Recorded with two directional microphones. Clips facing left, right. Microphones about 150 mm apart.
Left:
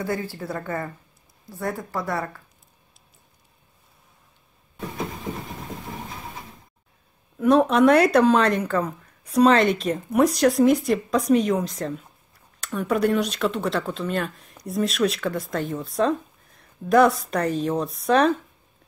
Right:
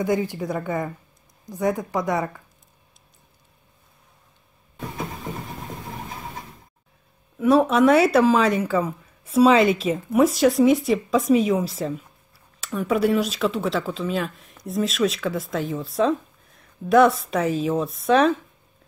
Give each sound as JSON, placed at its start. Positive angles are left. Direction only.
{"t": 0.0, "sound": "speech", "side_deg": -15}
{"t": 7.3, "sound": "speech", "side_deg": -5}